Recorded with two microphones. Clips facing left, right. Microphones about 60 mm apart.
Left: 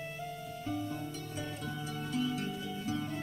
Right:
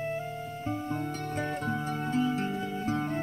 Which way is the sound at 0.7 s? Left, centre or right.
Right.